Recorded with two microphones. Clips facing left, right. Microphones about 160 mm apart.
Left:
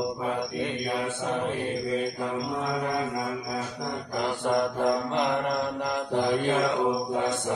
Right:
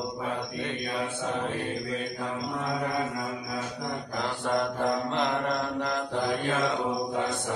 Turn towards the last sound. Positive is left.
turn(degrees=15)  # may be behind; listen again after turning